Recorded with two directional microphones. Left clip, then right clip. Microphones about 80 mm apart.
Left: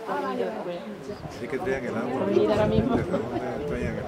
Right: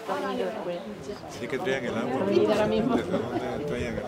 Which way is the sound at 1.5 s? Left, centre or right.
Right.